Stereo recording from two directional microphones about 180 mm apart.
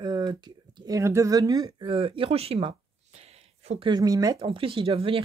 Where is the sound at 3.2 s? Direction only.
35° right (ahead or behind).